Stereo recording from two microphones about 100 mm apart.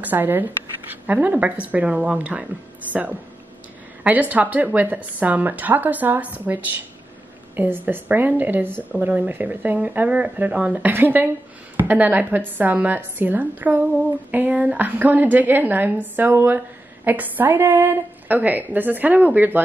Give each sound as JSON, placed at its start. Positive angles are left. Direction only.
{"t": 0.0, "sound": "a woman's voice", "side_deg": -20}